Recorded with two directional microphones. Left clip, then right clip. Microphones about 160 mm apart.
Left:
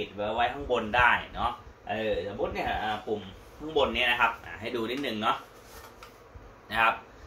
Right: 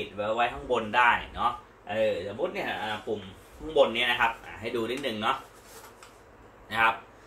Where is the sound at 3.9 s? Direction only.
15° left (ahead or behind).